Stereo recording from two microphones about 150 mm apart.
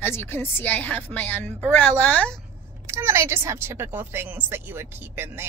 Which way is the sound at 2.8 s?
20° right (ahead or behind).